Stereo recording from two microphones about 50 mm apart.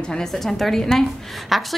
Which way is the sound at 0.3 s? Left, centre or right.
Centre.